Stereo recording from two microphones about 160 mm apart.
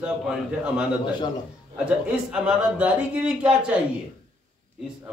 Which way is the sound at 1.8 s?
5° right (ahead or behind).